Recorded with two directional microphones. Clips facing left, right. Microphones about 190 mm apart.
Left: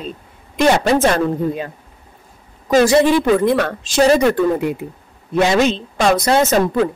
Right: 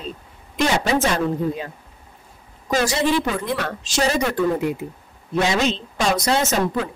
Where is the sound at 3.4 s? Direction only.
55° left (ahead or behind).